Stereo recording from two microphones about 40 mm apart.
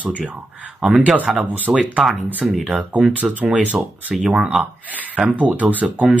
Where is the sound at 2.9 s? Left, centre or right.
Right.